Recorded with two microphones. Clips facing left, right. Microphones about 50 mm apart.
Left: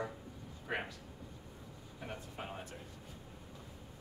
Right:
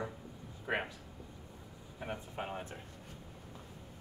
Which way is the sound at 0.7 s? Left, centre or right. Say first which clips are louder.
Right 4 dB; right.